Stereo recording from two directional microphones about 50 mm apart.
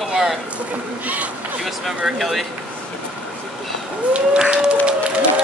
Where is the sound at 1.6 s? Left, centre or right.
Centre.